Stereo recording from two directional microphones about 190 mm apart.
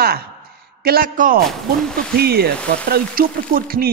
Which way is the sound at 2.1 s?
55° right (ahead or behind).